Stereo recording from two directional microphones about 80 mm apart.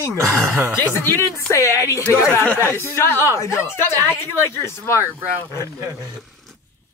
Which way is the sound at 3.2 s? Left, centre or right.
Left.